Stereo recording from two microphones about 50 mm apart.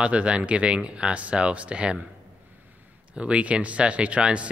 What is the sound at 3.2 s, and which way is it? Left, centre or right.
Speech, right.